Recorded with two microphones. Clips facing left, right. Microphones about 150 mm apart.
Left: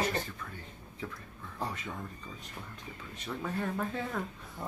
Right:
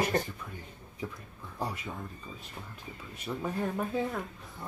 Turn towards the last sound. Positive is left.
turn(degrees=-15)  # may be behind; listen again after turning